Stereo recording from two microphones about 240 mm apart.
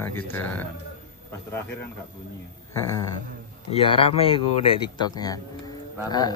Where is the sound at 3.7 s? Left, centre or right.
Left.